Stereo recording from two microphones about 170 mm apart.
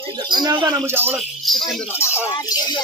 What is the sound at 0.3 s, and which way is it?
Speech, 25° right (ahead or behind).